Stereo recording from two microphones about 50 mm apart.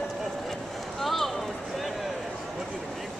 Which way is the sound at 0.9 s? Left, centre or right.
Centre.